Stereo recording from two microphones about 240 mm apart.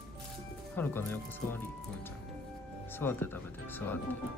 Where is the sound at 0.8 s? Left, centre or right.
Centre.